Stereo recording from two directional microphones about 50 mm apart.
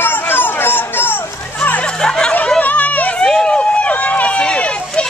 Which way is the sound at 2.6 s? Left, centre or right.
Left.